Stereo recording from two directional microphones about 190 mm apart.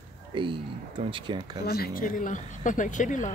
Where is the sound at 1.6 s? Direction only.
55° left (ahead or behind).